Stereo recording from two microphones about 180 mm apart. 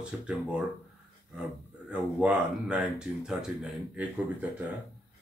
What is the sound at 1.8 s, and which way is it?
Speech, 5° right (ahead or behind).